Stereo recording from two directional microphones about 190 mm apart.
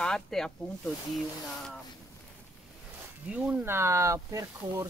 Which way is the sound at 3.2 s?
5° right (ahead or behind).